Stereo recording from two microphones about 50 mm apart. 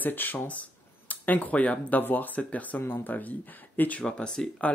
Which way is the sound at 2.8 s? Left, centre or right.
Left.